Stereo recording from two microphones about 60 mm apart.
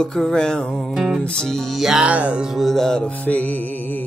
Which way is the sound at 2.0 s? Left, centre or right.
Right.